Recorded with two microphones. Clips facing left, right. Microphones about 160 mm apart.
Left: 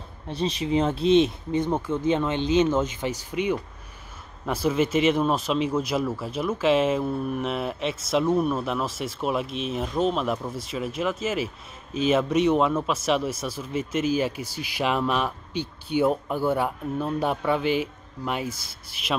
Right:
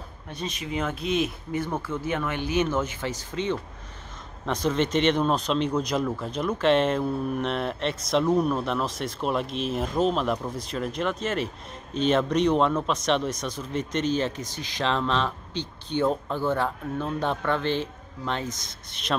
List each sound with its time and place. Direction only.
0.3 s speech: 30° left (ahead or behind); by 19.1 s 5° left (ahead or behind)